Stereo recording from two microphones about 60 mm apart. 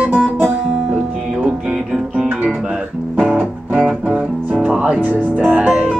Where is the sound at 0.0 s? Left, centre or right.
Centre.